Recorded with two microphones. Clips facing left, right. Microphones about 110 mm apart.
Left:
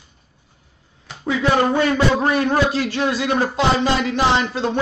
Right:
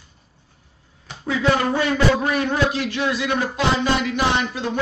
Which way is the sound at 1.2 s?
20° left (ahead or behind).